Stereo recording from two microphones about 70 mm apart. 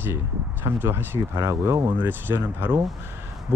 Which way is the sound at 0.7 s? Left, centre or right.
Right.